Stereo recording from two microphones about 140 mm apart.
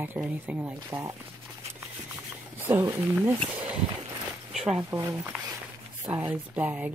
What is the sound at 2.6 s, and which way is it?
Speech, 15° right (ahead or behind).